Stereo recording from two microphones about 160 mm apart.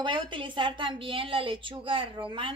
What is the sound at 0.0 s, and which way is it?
A woman's voice, 30° right (ahead or behind).